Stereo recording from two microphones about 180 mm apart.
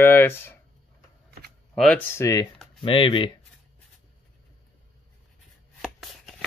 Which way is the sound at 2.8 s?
30° left (ahead or behind).